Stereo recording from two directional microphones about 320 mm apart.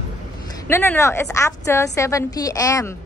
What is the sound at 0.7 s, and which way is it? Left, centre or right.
A woman's voice, centre.